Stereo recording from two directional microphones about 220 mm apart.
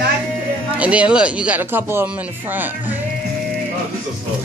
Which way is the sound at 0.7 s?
5° right (ahead or behind).